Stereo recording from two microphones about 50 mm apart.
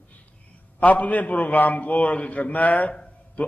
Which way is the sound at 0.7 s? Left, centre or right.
Left.